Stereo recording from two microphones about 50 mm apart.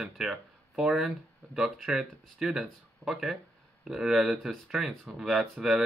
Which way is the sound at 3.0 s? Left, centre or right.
Centre.